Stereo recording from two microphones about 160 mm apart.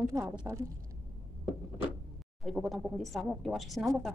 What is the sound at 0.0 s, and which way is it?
Speech, 20° right (ahead or behind).